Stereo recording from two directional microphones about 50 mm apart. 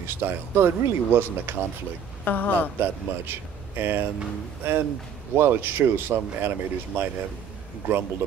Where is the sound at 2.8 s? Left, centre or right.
Right.